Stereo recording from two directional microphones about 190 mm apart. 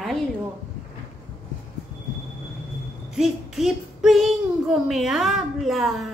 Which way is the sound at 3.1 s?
Centre (ahead or behind).